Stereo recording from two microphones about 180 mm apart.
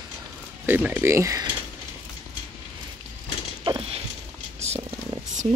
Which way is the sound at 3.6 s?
25° right (ahead or behind).